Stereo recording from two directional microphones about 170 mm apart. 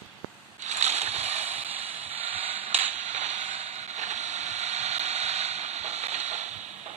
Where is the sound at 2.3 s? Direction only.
40° right (ahead or behind).